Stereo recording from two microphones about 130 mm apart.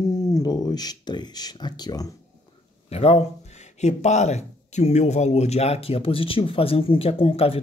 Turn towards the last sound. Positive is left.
turn(degrees=45)  # may be behind; listen again after turning